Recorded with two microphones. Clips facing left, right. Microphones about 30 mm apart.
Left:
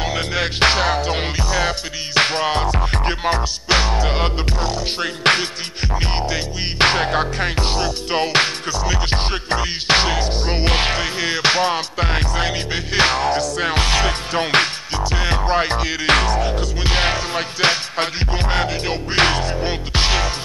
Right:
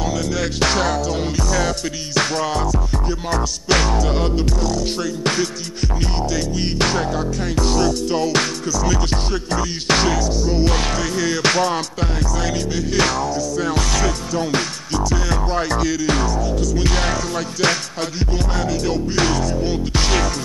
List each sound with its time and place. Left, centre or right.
0.0 s music: left
3.3 s music: left
5.0 s music: left
6.1 s music: left
13.2 s music: left
15.0 s music: left
16.1 s music: left
16.5 s music: left